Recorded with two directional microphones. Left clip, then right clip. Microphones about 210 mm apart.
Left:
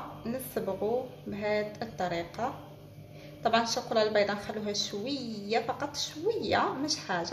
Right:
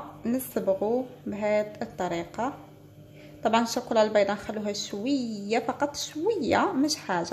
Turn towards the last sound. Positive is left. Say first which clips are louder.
# right 4 dB
turn(degrees=-45)  # may be behind; listen again after turning